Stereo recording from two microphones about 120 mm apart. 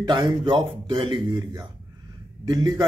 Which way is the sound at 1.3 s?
25° right (ahead or behind).